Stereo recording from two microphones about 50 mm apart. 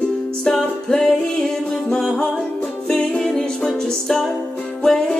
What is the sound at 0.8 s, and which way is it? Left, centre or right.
Music, centre.